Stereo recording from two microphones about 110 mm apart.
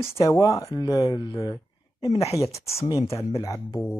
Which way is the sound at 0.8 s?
40° left (ahead or behind).